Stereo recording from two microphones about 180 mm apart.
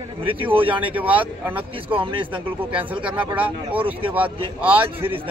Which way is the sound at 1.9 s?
30° right (ahead or behind).